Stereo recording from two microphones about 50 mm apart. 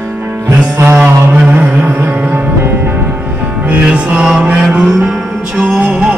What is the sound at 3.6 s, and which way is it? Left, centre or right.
Music, right.